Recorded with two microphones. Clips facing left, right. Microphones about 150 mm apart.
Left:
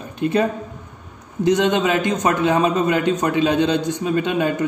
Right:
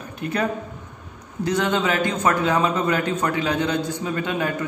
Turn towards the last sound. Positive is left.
turn(degrees=20)  # may be behind; listen again after turning